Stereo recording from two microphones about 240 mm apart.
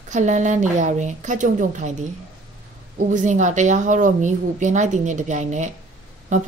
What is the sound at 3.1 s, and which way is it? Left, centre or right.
A woman's voice, right.